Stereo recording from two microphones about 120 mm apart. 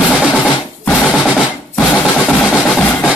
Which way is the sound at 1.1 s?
5° right (ahead or behind).